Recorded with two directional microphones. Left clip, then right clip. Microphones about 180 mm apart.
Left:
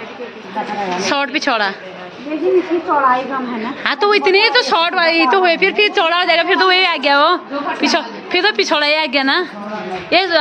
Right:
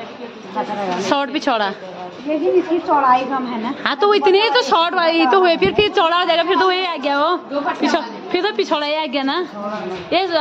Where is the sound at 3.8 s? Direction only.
20° right (ahead or behind).